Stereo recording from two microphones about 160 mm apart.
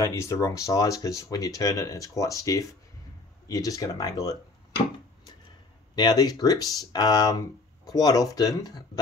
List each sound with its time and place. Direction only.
0.0 s speech: 15° left (ahead or behind)
5.9 s speech: 25° left (ahead or behind)